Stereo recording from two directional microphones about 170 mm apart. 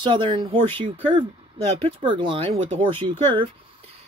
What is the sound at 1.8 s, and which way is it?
Speech, 30° right (ahead or behind).